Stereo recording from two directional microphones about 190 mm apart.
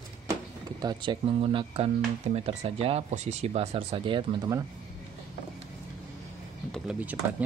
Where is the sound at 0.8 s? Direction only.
20° right (ahead or behind).